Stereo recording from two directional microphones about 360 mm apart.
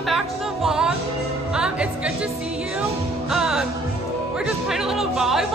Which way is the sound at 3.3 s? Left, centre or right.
Centre.